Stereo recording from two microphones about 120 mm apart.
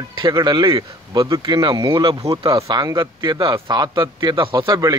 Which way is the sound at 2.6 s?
25° right (ahead or behind).